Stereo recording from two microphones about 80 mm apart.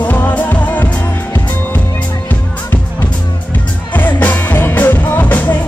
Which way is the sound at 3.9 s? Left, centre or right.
Left.